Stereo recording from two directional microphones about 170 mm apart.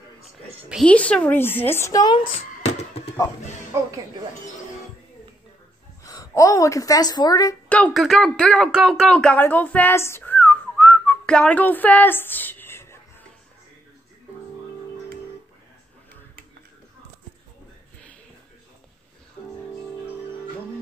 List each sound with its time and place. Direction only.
0.8 s speech: 10° left (ahead or behind); by 3.0 s 40° left (ahead or behind)
3.7 s speech: 15° right (ahead or behind)
6.0 s a woman's voice: 20° left (ahead or behind)
7.7 s speech: 5° left (ahead or behind)